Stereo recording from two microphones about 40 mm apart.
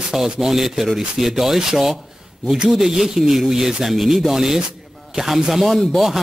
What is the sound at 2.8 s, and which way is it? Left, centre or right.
Speech, centre.